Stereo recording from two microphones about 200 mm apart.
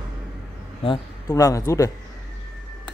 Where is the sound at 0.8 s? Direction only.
20° left (ahead or behind).